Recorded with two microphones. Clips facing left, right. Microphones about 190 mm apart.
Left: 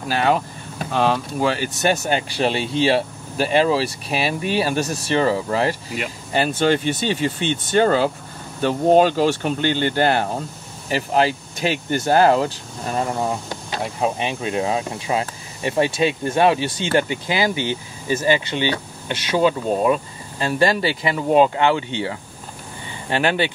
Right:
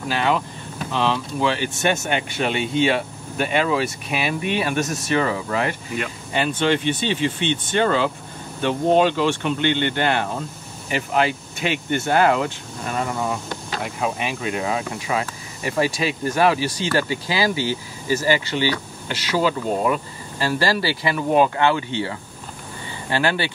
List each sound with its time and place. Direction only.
0.1 s speech: 45° left (ahead or behind)
14.0 s speech: 30° left (ahead or behind)